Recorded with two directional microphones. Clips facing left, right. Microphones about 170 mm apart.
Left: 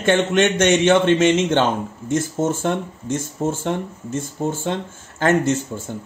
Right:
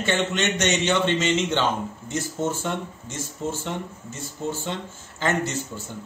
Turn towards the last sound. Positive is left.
turn(degrees=50)  # may be behind; listen again after turning